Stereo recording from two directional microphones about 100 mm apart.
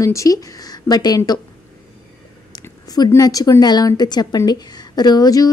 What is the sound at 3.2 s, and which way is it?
Speech, 35° left (ahead or behind).